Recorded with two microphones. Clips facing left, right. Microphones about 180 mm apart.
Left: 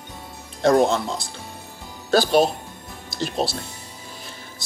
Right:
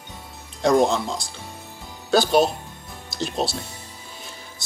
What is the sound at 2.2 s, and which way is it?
Speech, centre (ahead or behind).